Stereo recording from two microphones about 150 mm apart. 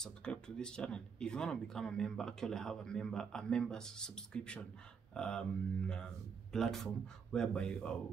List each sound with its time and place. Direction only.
0.0 s speech: 5° left (ahead or behind)